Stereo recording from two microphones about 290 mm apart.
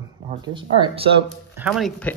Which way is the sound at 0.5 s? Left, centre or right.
Centre.